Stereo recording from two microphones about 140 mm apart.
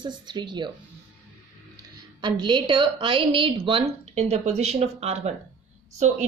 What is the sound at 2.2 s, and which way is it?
A woman's voice, 35° right (ahead or behind).